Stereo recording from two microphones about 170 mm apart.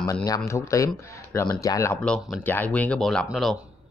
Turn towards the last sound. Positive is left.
turn(degrees=0)  # may be behind; listen again after turning